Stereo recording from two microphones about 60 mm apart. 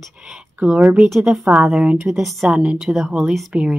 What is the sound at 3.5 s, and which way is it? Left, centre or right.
Speech, centre.